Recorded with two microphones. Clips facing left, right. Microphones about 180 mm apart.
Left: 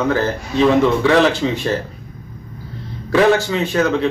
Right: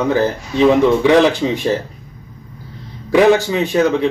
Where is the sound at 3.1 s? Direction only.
15° right (ahead or behind).